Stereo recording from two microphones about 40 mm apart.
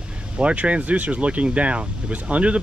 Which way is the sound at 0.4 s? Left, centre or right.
Right.